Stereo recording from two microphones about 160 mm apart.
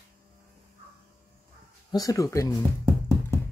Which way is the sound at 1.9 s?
20° left (ahead or behind).